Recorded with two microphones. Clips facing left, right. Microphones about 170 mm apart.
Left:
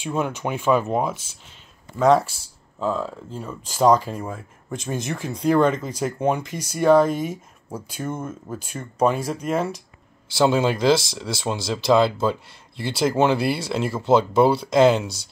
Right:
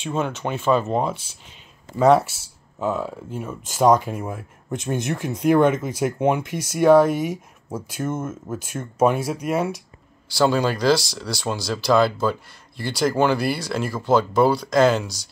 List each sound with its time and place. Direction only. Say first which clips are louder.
0.0 s speech: even; 10° left (ahead or behind)
2.0 s speech: right 1 dB; 5° right (ahead or behind)
10.3 s speech: left 1 dB; 20° left (ahead or behind)